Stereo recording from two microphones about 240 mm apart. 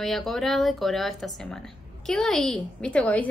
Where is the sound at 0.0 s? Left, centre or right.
Centre.